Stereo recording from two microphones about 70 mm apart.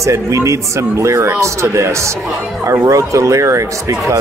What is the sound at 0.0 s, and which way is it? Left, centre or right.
Speech, right.